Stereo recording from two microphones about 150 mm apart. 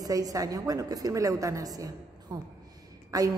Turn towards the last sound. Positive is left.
turn(degrees=-25)  # may be behind; listen again after turning